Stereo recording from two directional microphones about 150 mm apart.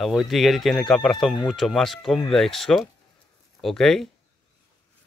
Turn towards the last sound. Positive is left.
turn(degrees=5)  # may be behind; listen again after turning